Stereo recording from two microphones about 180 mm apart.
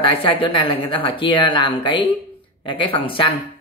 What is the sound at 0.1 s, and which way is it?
Speech, 30° left (ahead or behind).